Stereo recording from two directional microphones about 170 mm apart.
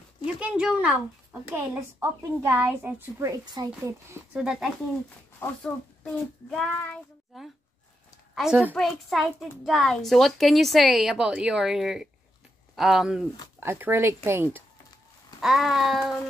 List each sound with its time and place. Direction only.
0.4 s a woman's voice: 5° right (ahead or behind)
4.3 s a child's voice: 5° right (ahead or behind)
6.5 s child singing: 10° left (ahead or behind)
7.3 s a child's voice: centre (ahead or behind)
13.6 s a woman's voice: 15° right (ahead or behind)
15.4 s a child's voice: centre (ahead or behind)